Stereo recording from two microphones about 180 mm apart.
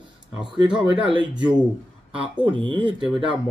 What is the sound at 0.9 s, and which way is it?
Speech, 25° right (ahead or behind).